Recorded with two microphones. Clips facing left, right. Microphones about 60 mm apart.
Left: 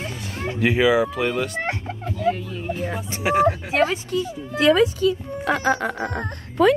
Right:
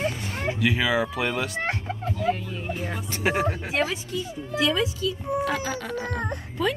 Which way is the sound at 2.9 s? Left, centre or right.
Centre.